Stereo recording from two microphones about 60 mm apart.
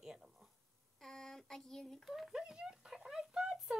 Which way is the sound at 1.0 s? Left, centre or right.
Centre.